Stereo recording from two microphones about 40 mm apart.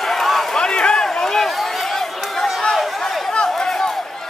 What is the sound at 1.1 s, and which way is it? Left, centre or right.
Run, centre.